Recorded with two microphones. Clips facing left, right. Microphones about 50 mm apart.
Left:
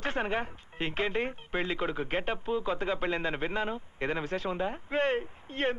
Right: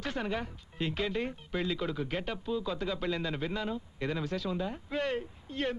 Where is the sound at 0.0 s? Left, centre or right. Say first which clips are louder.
Left 3 dB; left.